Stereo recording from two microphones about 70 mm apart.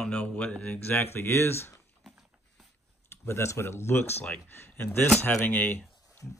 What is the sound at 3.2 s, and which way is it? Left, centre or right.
Speech, left.